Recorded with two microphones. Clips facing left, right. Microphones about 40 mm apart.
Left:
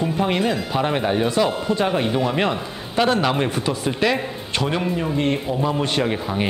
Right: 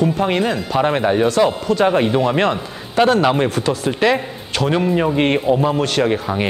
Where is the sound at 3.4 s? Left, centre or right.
Centre.